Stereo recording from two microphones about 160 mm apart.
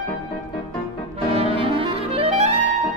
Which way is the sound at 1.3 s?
35° right (ahead or behind).